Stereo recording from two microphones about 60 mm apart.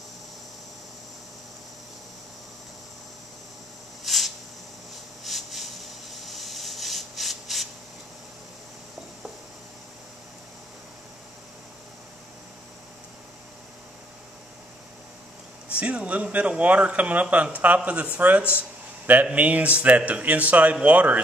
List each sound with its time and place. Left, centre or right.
4.0 s a sound: centre
5.2 s rub: centre
15.8 s speech: right